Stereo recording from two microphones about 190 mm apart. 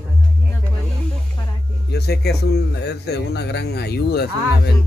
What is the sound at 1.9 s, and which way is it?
A man's voice, 60° left (ahead or behind).